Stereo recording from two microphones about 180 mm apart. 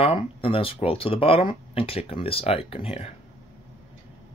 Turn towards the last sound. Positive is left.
turn(degrees=35)  # may be behind; listen again after turning